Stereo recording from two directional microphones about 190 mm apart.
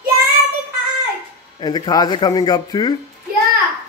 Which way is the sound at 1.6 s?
20° left (ahead or behind).